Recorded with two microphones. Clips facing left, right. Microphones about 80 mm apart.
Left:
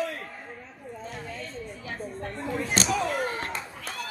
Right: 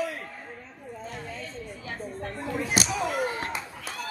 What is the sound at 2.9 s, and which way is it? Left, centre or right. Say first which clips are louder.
Slam: left 2 dB; centre.